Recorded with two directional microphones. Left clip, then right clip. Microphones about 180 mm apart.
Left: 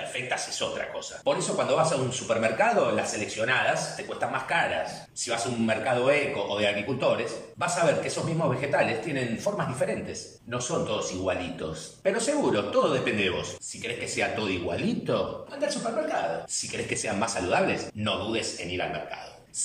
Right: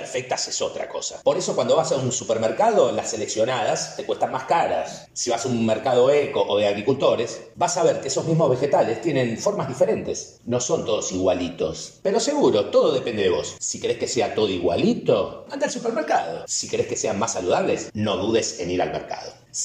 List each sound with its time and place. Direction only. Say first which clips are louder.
0.1 s speech: right 8 dB; 25° right (ahead or behind)
15.6 s a man's voice: right 4 dB; 45° right (ahead or behind)
16.5 s speech: right 7 dB; 20° right (ahead or behind)
18.0 s speech: right 7 dB; 35° right (ahead or behind)